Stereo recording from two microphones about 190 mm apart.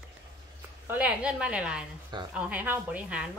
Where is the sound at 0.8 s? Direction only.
5° right (ahead or behind).